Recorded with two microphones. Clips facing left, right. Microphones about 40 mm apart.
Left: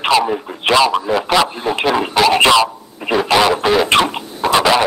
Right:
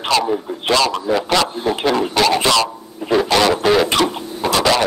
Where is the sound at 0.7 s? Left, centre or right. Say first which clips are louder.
Left 3 dB; centre.